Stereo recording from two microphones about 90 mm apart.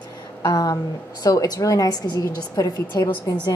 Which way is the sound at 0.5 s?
40° left (ahead or behind).